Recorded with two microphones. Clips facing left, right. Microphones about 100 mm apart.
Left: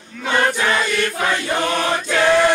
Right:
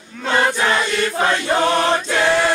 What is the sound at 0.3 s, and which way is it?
Choir, 15° right (ahead or behind).